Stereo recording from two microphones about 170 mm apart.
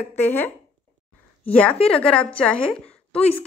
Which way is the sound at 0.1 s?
10° left (ahead or behind).